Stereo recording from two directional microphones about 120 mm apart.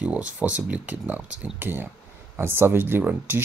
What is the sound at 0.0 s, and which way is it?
Speech, 10° right (ahead or behind).